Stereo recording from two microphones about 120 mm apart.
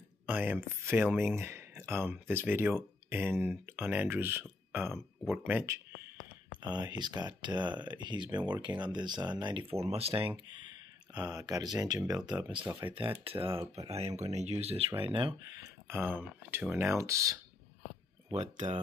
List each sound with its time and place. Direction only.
0.3 s speech: 15° right (ahead or behind)
6.6 s speech: 35° right (ahead or behind)
9.8 s speech: 55° right (ahead or behind)
11.1 s speech: 30° right (ahead or behind)
12.9 s speech: 45° right (ahead or behind)
13.8 s speech: 60° right (ahead or behind)
15.0 s speech: 45° right (ahead or behind)
15.6 s speech: 20° right (ahead or behind)
18.3 s speech: 75° right (ahead or behind)